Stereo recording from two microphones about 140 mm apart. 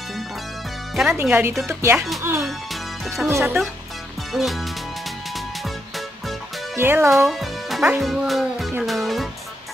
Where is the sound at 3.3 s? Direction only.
20° right (ahead or behind).